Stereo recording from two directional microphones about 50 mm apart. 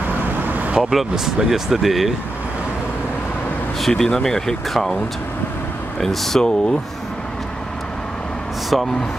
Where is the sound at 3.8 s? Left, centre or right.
Centre.